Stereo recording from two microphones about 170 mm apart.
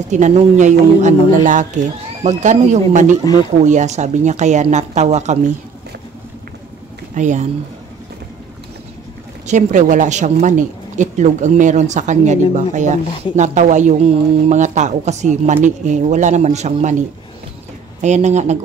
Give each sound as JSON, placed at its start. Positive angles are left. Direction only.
{"t": 0.1, "sound": "speech", "side_deg": -40}
{"t": 2.2, "sound": "speech", "side_deg": -45}
{"t": 7.2, "sound": "speech", "side_deg": -45}
{"t": 9.5, "sound": "speech", "side_deg": -45}
{"t": 18.0, "sound": "speech", "side_deg": -40}